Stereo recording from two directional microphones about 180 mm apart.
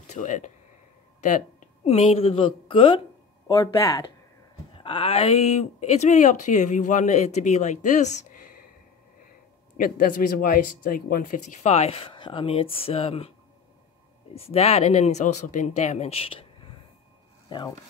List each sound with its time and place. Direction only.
0.0 s a woman's voice: 45° left (ahead or behind)
3.4 s speech: 20° left (ahead or behind)
4.7 s speech: 30° left (ahead or behind)
9.8 s speech: 50° left (ahead or behind); by 13.3 s 30° left (ahead or behind)
14.3 s speech: 35° left (ahead or behind)
17.5 s speech: 25° left (ahead or behind)